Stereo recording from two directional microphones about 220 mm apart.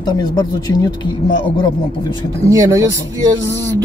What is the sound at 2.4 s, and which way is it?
Speech, 15° right (ahead or behind).